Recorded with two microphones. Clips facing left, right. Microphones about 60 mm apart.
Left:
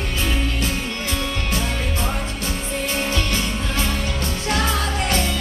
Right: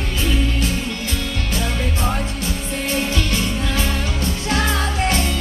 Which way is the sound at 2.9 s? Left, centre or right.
Left.